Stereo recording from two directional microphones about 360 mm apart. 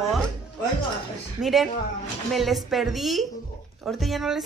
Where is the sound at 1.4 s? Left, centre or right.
Centre.